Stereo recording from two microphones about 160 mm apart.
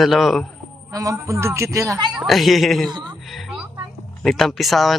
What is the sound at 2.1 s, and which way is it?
Speech, centre (ahead or behind).